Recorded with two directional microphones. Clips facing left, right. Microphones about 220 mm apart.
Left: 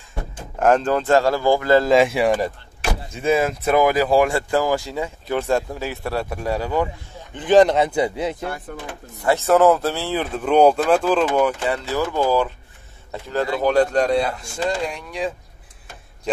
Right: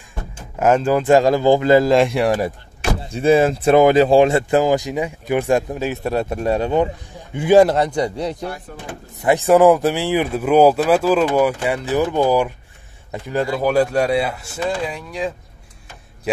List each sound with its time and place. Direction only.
0.6 s speech: 5° right (ahead or behind)
1.9 s a man's voice: centre (ahead or behind)
3.0 s speech: 35° right (ahead or behind)
7.3 s a man's voice: 10° right (ahead or behind)
9.2 s speech: 15° right (ahead or behind)